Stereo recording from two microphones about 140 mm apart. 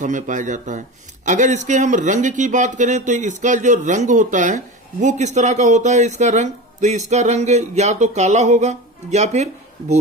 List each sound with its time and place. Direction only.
0.0 s a man's voice: 65° right (ahead or behind)